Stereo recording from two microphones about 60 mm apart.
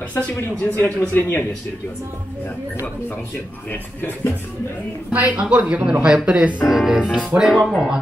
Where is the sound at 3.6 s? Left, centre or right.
Left.